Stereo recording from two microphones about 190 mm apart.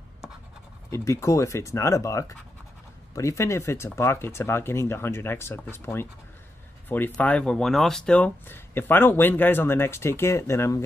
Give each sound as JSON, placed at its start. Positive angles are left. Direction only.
{"t": 0.8, "sound": "speech", "side_deg": 15}